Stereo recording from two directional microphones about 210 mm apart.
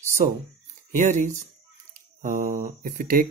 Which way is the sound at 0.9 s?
35° right (ahead or behind).